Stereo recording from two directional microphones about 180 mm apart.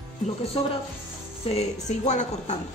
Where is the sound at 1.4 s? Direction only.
40° left (ahead or behind).